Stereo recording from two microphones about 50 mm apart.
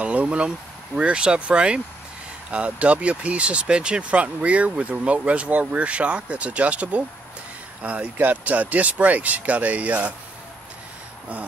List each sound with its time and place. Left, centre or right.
0.0 s speech: right